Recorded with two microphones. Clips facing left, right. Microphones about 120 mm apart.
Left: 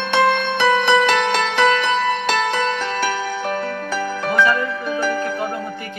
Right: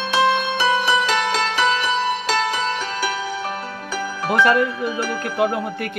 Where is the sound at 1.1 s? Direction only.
5° right (ahead or behind).